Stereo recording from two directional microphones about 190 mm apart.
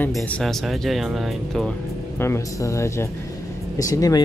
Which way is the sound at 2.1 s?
15° left (ahead or behind).